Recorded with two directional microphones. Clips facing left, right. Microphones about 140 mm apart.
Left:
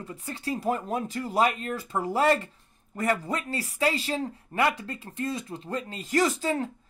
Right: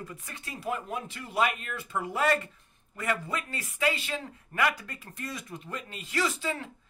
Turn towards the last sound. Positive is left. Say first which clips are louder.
# left 6 dB
turn(degrees=40)  # may be behind; listen again after turning